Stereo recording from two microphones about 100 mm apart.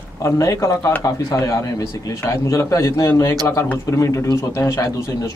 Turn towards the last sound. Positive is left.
turn(degrees=30)  # may be behind; listen again after turning